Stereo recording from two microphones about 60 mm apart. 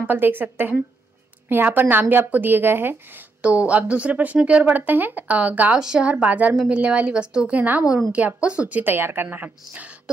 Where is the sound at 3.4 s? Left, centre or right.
Right.